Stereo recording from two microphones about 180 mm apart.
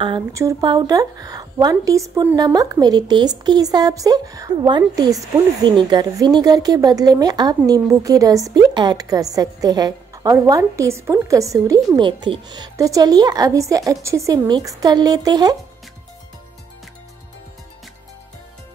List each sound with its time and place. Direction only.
0.3 s a woman's voice: 15° right (ahead or behind)